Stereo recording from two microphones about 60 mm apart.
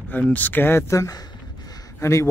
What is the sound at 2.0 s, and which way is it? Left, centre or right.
Speech, left.